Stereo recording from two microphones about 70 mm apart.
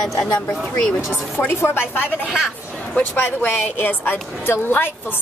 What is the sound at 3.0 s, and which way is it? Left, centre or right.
A woman's voice, left.